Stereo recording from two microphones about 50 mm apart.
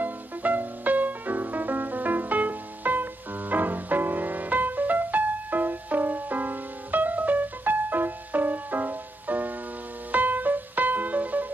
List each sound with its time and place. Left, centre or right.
0.0 s music: right